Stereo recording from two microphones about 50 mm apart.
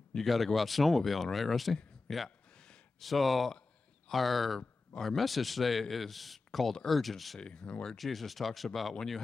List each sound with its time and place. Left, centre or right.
0.2 s speech: centre
2.5 s a sound: centre
3.0 s speech: centre
7.3 s speech: centre
8.0 s speech: centre